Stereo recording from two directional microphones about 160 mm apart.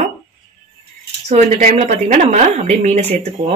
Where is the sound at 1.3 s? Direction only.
50° right (ahead or behind).